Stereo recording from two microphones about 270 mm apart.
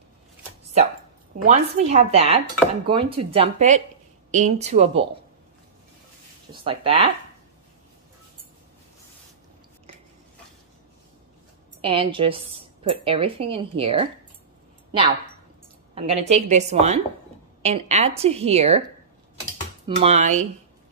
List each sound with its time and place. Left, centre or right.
1.5 s speech: right
6.5 s speech: centre
11.8 s speech: centre
20.0 s speech: right